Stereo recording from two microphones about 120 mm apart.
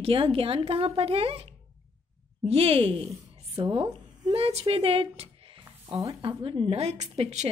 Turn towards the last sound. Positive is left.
turn(degrees=-70)  # may be behind; listen again after turning